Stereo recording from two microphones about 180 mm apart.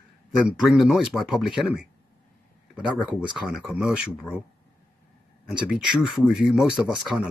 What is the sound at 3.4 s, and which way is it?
Speech, 5° right (ahead or behind).